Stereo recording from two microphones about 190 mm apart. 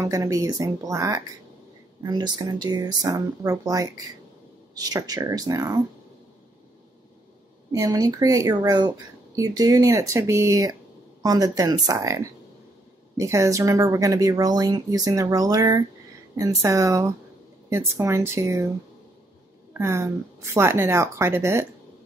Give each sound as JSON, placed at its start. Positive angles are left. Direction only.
{"t": 0.0, "sound": "speech", "side_deg": -20}
{"t": 7.7, "sound": "speech", "side_deg": -20}
{"t": 19.7, "sound": "speech", "side_deg": -15}